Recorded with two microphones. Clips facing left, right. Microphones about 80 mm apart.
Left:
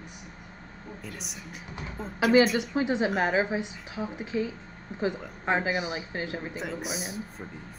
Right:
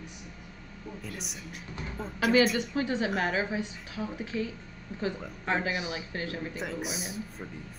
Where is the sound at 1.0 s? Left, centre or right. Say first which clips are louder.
Even; centre.